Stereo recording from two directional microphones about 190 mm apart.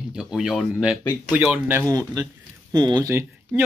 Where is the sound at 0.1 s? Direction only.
5° right (ahead or behind).